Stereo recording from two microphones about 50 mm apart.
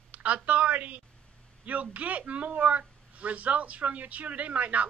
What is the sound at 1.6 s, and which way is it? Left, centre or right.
A man's voice, right.